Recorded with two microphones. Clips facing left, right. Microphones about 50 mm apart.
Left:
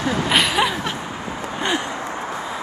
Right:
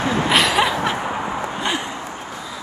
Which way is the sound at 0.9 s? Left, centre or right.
Right.